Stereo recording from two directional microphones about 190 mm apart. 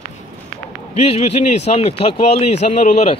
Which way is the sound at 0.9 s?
35° left (ahead or behind).